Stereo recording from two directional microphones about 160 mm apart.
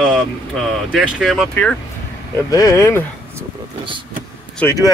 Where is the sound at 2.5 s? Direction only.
20° left (ahead or behind).